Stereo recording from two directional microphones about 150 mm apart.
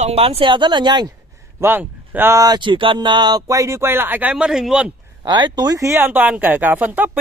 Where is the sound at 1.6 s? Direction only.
15° right (ahead or behind).